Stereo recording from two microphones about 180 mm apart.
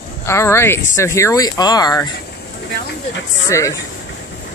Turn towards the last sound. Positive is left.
turn(degrees=15)  # may be behind; listen again after turning